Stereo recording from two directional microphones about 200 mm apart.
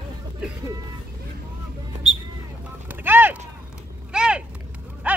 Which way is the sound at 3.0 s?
10° right (ahead or behind).